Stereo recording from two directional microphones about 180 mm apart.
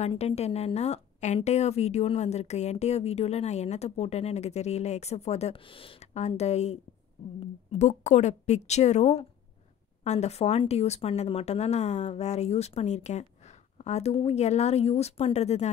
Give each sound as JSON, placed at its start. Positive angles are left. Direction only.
{"t": 0.0, "sound": "a woman's voice", "side_deg": 35}